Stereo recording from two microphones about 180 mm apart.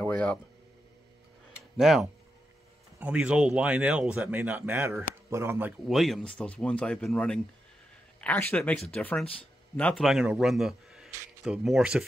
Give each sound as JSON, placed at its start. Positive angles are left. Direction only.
{"t": 0.0, "sound": "speech", "side_deg": 5}
{"t": 1.8, "sound": "a man's voice", "side_deg": 0}